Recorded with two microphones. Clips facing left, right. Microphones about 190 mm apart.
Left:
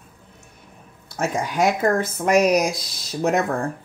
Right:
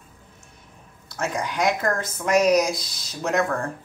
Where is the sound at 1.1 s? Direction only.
50° left (ahead or behind).